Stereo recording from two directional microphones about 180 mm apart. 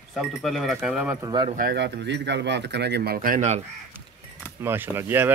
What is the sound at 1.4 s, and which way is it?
Speech, 50° right (ahead or behind).